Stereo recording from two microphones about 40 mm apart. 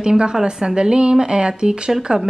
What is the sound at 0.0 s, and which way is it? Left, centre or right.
A woman's voice, centre.